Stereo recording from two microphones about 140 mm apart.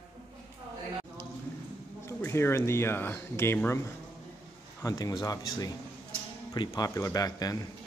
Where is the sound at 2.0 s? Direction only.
20° left (ahead or behind).